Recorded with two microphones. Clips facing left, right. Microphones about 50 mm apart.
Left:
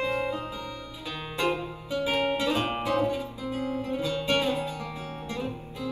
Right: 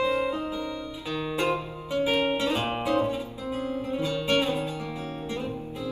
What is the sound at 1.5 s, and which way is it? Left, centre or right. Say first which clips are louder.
Music: right 2 dB; right.